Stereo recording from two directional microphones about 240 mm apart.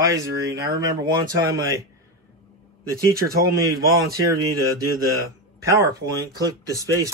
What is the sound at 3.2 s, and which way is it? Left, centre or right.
Speech, right.